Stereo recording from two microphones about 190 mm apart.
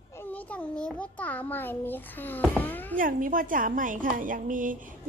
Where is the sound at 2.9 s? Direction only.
45° right (ahead or behind).